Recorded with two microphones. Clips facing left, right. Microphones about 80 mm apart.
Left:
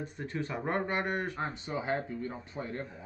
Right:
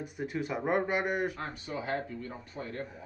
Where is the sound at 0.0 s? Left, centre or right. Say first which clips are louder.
Right 2 dB; centre.